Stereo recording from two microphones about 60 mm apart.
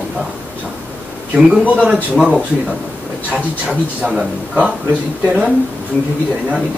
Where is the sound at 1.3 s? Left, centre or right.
Centre.